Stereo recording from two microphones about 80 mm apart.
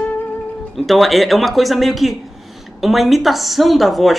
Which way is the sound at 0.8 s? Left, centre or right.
Centre.